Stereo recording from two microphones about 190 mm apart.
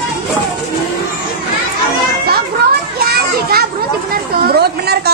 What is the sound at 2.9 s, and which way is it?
Children playing, 55° right (ahead or behind).